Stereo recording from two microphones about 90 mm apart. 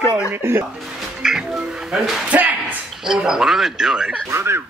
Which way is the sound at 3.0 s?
5° right (ahead or behind).